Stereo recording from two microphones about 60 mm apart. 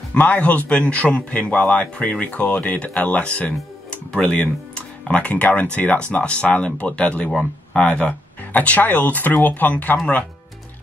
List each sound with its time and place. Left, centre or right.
0.1 s a man's voice: left